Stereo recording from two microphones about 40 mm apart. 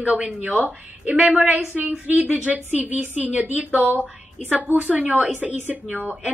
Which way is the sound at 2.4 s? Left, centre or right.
Right.